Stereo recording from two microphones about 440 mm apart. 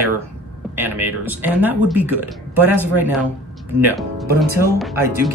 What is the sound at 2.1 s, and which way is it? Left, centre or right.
Speech, right.